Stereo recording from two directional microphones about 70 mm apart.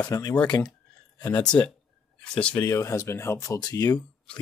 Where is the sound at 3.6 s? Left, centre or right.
Left.